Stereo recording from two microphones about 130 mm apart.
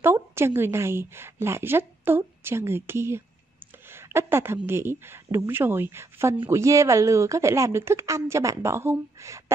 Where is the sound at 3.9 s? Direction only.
20° right (ahead or behind).